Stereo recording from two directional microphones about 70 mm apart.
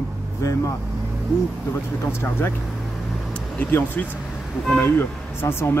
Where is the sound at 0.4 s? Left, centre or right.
Left.